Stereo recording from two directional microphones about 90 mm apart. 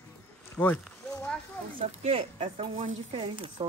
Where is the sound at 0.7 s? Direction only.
10° left (ahead or behind).